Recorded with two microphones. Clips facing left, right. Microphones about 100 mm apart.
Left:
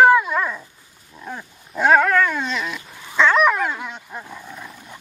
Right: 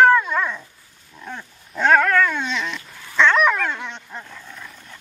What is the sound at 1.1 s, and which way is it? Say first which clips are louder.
Dog: left 1 dB; 10° left (ahead or behind).